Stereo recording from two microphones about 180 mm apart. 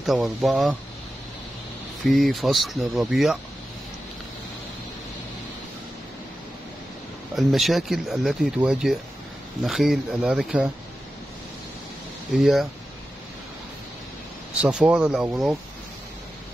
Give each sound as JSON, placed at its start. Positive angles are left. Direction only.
{"t": 0.0, "sound": "speech", "side_deg": 0}
{"t": 2.0, "sound": "speech", "side_deg": 0}
{"t": 7.3, "sound": "speech", "side_deg": 0}
{"t": 12.4, "sound": "speech", "side_deg": 0}
{"t": 14.6, "sound": "speech", "side_deg": -5}